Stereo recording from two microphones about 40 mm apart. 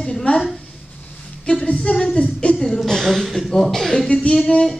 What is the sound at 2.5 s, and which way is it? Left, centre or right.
A woman's voice, centre.